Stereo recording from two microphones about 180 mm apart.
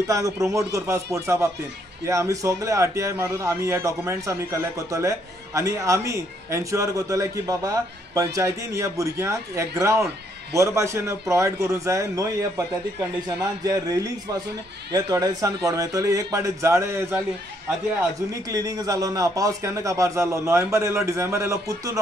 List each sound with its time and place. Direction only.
0.0 s a man's voice: 20° right (ahead or behind)
18.3 s a man's voice: 20° right (ahead or behind)